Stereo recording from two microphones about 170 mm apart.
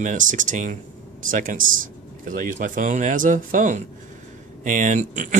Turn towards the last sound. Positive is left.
turn(degrees=-50)  # may be behind; listen again after turning